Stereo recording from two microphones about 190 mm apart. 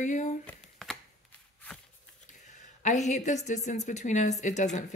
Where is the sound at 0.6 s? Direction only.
Centre (ahead or behind).